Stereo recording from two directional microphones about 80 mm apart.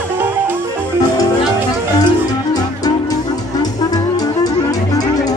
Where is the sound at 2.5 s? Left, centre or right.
Left.